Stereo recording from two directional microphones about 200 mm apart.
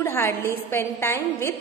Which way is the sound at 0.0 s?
10° left (ahead or behind).